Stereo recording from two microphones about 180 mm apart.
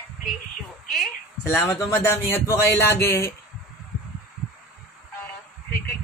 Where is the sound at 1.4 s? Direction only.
15° left (ahead or behind).